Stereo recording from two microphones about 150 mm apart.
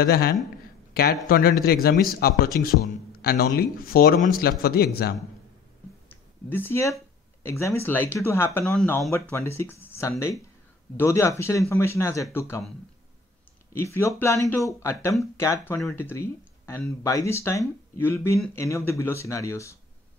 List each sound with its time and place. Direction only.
0.0 s speech: 90° left
6.0 s a sound: 15° left (ahead or behind)
7.4 s speech: 15° left (ahead or behind)
13.7 s speech: 15° left (ahead or behind)